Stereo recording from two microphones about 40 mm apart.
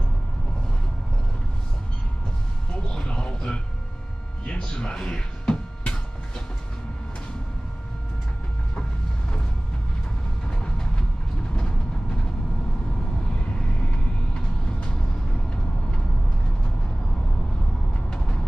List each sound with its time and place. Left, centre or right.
2.9 s a sound: centre
4.5 s music: left
10.5 s train: centre
11.5 s vehicle: left
14.3 s vehicle: left
18.1 s music: left